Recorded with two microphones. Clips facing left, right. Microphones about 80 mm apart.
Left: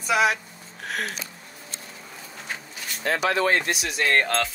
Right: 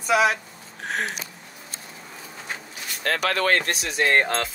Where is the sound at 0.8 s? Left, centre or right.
Right.